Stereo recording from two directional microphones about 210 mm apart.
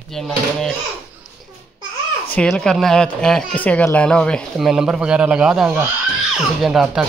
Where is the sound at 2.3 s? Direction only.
5° left (ahead or behind).